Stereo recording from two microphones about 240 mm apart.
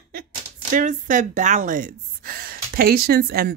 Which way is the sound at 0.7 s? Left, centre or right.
Right.